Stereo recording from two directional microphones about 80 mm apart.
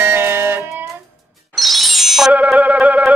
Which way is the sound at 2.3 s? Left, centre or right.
Centre.